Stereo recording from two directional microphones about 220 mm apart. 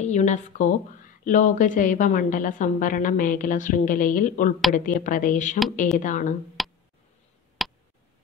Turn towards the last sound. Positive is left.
turn(degrees=0)  # may be behind; listen again after turning